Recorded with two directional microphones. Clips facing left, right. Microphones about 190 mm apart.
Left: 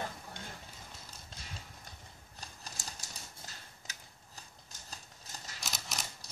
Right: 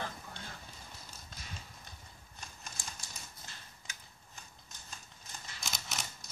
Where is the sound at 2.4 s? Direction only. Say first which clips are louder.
Left 1 dB; 40° left (ahead or behind).